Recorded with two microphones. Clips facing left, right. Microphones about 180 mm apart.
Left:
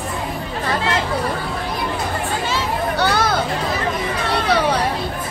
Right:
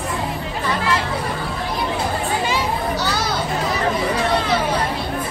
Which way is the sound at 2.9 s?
55° left (ahead or behind).